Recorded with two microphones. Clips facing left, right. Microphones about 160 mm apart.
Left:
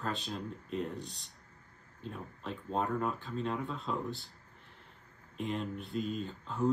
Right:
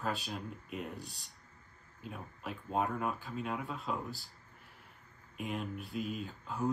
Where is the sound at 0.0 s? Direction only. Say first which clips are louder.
Even; centre (ahead or behind).